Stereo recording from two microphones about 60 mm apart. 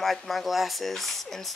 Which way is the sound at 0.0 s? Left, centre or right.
Centre.